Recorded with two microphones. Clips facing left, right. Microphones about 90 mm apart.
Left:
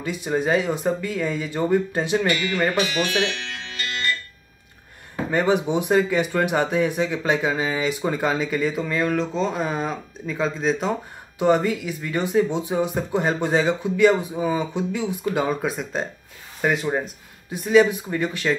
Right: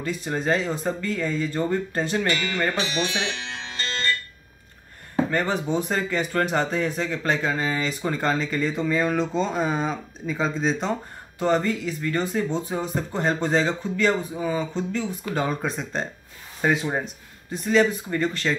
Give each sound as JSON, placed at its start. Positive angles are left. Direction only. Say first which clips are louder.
{"t": 0.0, "sound": "speech", "louder": "left 3 dB", "side_deg": 10}
{"t": 2.8, "sound": "speech", "louder": "left 4 dB", "side_deg": -20}
{"t": 5.3, "sound": "speech", "louder": "left 8 dB", "side_deg": 10}
{"t": 17.5, "sound": "speech", "louder": "left 4 dB", "side_deg": 10}